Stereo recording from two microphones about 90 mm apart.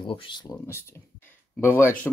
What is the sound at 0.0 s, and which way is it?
Speech, 70° left (ahead or behind).